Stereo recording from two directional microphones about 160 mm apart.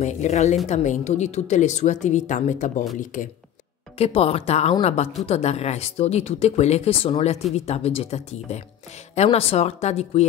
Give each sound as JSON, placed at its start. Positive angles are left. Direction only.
{"t": 0.0, "sound": "a woman's voice", "side_deg": 45}
{"t": 4.0, "sound": "a woman's voice", "side_deg": 40}